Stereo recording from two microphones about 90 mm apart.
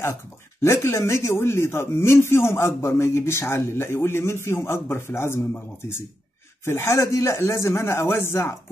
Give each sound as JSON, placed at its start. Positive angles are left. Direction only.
{"t": 0.6, "sound": "speech", "side_deg": 30}
{"t": 6.6, "sound": "speech", "side_deg": 30}